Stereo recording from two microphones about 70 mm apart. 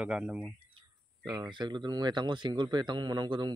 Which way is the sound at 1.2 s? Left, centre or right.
Right.